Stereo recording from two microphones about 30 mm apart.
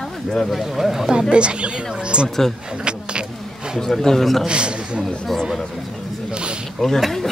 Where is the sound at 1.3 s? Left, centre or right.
Right.